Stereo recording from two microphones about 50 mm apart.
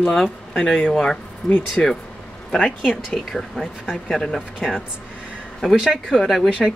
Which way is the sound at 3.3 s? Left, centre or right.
Centre.